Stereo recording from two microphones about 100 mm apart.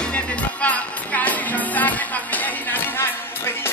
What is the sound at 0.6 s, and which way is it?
Music, 15° left (ahead or behind).